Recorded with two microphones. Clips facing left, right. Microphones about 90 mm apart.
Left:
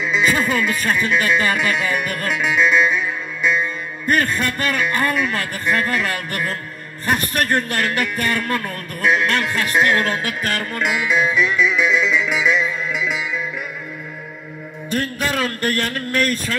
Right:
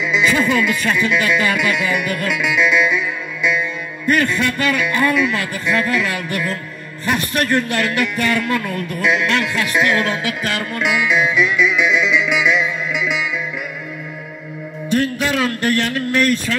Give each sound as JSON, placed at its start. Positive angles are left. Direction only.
{"t": 0.0, "sound": "a man's voice", "side_deg": 40}
{"t": 4.0, "sound": "a man's voice", "side_deg": 40}
{"t": 14.9, "sound": "a man's voice", "side_deg": 40}